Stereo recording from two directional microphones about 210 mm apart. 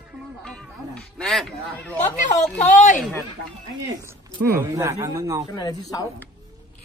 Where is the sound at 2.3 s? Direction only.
35° left (ahead or behind).